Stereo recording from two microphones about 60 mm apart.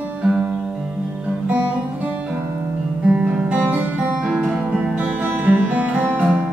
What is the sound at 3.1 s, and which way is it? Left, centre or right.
Music, centre.